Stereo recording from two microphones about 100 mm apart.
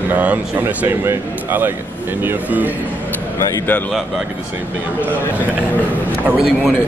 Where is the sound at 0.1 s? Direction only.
15° right (ahead or behind).